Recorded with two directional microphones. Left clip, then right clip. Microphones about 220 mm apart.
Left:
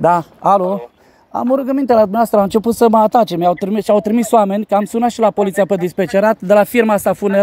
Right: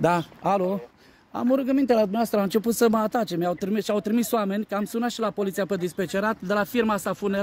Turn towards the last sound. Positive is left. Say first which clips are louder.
# left 12 dB
turn(degrees=30)  # may be behind; listen again after turning